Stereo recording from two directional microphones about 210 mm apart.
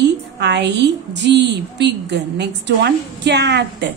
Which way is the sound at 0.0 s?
55° right (ahead or behind).